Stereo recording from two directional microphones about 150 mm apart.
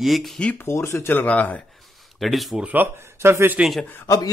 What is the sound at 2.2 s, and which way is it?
Speech, centre (ahead or behind).